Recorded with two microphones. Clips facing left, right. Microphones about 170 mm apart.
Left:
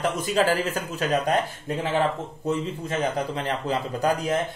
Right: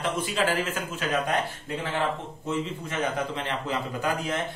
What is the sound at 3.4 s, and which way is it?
Speech, 35° left (ahead or behind).